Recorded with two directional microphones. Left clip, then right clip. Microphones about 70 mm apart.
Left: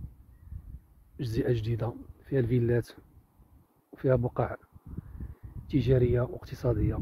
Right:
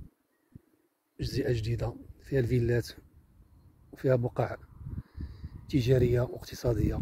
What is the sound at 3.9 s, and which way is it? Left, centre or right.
Speech, left.